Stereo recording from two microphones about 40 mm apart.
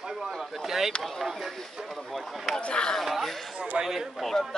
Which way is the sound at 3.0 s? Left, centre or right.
Centre.